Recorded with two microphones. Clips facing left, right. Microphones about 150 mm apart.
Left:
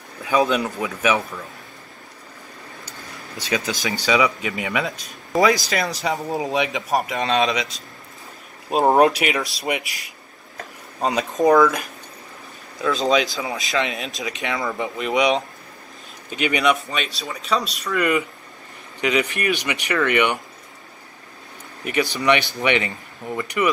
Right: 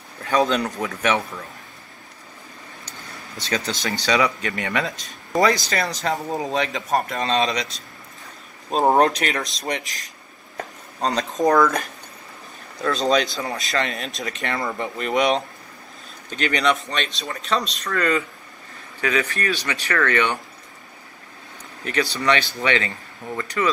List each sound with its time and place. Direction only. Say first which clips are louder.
0.5 s speech: left 1 dB; 5° left (ahead or behind)
3.3 s speech: left 2 dB; 15° left (ahead or behind)
11.0 s speech: left 2 dB; 5° left (ahead or behind)
17.9 s speech: left 1 dB; 15° left (ahead or behind)
21.8 s speech: left 2 dB; 15° left (ahead or behind)